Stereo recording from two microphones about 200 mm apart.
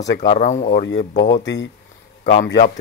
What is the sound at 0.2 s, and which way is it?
Speech, 35° left (ahead or behind).